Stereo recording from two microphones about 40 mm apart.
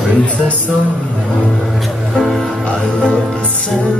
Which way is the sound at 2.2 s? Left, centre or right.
Centre.